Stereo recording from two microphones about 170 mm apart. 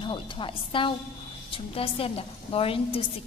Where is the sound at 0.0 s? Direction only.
30° left (ahead or behind).